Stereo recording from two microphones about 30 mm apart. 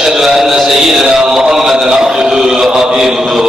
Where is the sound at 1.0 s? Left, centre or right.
Right.